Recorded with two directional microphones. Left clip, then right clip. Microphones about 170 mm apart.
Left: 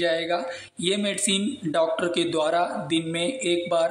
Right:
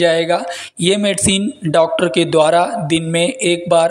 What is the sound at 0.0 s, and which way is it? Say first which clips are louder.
Speech: right 10 dB; 45° right (ahead or behind).